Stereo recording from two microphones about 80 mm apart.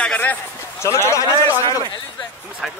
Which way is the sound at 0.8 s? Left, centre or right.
Left.